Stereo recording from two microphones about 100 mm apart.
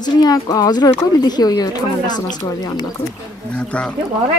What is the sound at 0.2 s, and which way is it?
Speech, 40° left (ahead or behind).